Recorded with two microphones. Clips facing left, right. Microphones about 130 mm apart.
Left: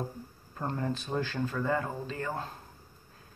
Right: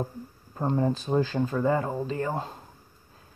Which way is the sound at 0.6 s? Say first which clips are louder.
Right 7 dB; 25° right (ahead or behind).